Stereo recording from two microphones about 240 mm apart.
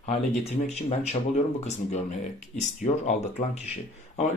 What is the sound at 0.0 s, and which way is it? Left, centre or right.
Speech, left.